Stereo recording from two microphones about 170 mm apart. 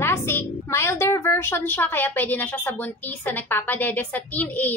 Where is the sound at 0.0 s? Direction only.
15° left (ahead or behind).